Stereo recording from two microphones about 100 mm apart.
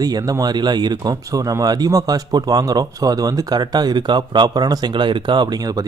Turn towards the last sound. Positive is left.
turn(degrees=-50)  # may be behind; listen again after turning